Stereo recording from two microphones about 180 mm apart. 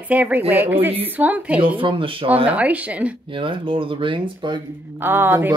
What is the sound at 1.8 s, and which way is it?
Speech, 30° right (ahead or behind).